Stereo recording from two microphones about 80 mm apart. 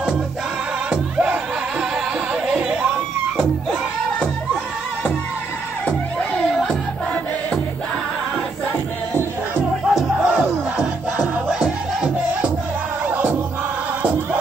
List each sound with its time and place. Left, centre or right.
0.8 s music: centre
5.9 s music: centre
6.4 s music: centre
9.6 s music: centre
13.0 s music: centre